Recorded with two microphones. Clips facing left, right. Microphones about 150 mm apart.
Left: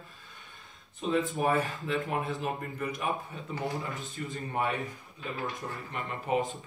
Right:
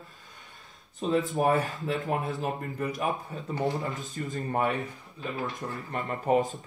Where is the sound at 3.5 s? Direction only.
20° right (ahead or behind).